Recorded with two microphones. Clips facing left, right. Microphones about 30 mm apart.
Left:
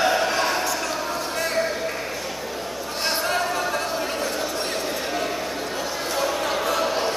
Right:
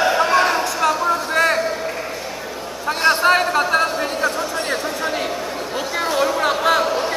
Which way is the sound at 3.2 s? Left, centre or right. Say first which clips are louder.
Right 8 dB; right.